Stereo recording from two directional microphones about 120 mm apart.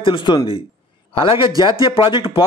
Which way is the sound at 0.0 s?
40° left (ahead or behind).